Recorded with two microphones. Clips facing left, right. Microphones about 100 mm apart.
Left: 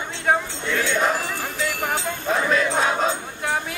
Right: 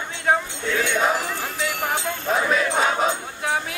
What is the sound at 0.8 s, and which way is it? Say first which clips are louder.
Music: even; 5° right (ahead or behind).